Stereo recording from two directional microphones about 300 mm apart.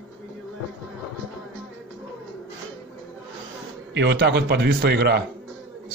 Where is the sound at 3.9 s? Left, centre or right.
Right.